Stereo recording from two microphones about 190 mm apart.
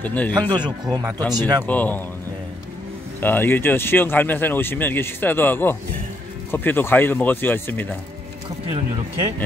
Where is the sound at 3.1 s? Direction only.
10° left (ahead or behind).